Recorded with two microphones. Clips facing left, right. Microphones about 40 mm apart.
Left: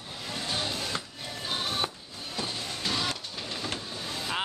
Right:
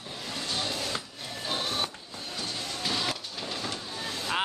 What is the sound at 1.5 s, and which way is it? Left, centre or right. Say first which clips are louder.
Printer: even; centre.